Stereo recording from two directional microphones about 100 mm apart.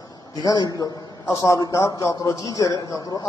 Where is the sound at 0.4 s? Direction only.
40° left (ahead or behind).